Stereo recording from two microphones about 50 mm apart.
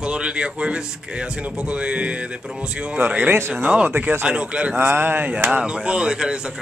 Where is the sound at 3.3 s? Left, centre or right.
Right.